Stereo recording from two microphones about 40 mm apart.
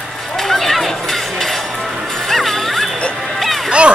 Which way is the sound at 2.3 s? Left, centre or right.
Centre.